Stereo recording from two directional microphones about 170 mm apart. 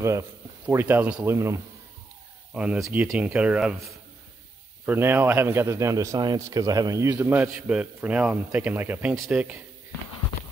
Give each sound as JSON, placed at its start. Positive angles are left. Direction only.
{"t": 0.0, "sound": "speech", "side_deg": -15}
{"t": 4.8, "sound": "speech", "side_deg": -10}